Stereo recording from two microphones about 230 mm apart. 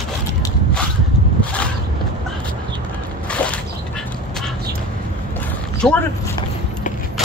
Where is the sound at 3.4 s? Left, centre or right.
Centre.